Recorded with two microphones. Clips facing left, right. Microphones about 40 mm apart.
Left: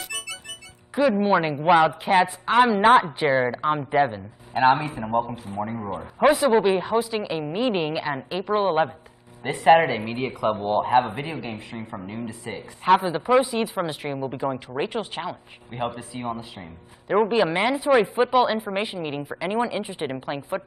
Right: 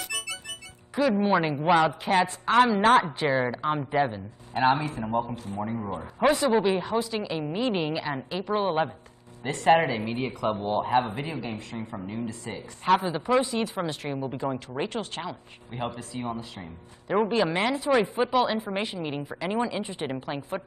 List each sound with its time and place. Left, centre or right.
0.9 s a woman's voice: centre